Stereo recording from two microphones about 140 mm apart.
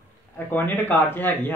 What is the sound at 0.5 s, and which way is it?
Speech, 15° left (ahead or behind).